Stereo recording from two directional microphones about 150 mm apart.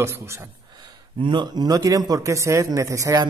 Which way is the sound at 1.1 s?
30° right (ahead or behind).